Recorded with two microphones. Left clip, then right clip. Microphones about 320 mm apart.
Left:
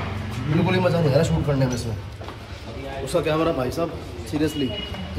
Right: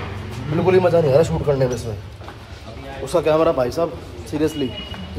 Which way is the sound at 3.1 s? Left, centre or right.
Centre.